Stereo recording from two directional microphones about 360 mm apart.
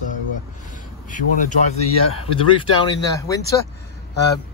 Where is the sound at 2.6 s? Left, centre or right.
Centre.